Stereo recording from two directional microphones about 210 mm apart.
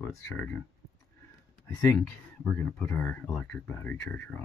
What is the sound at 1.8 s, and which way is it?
Speech, 5° left (ahead or behind).